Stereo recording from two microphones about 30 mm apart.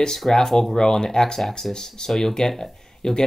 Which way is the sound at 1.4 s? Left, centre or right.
Centre.